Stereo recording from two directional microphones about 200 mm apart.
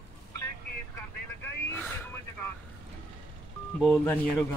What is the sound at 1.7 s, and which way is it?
Vehicle, 10° left (ahead or behind).